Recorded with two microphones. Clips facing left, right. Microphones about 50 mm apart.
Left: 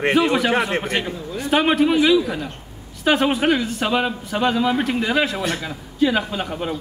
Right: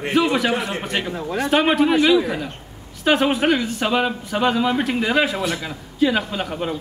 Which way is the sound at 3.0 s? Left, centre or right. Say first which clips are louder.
Even; centre.